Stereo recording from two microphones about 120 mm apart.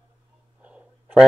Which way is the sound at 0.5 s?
10° right (ahead or behind).